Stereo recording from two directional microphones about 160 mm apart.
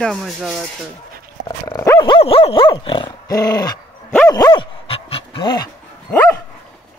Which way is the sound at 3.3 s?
20° left (ahead or behind).